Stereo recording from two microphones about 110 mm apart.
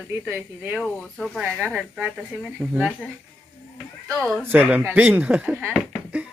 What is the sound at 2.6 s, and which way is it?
Speech, 5° left (ahead or behind).